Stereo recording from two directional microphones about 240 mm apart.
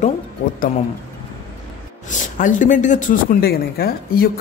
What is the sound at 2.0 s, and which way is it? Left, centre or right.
A man's voice, left.